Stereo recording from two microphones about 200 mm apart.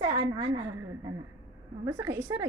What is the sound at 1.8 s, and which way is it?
Speech, 15° right (ahead or behind).